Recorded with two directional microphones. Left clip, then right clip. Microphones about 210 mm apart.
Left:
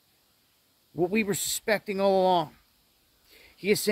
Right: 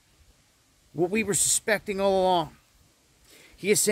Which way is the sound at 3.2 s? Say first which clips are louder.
Right 1 dB; centre (ahead or behind).